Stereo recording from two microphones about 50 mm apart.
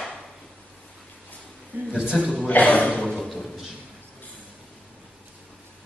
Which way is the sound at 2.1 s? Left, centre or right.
Centre.